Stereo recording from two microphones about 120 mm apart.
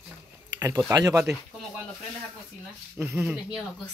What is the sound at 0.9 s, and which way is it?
Speech, 25° right (ahead or behind).